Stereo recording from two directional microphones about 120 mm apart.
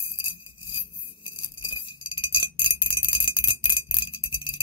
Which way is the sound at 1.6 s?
45° left (ahead or behind).